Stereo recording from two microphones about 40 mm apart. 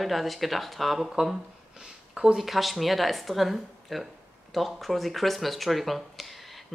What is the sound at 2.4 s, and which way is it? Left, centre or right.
Speech, centre.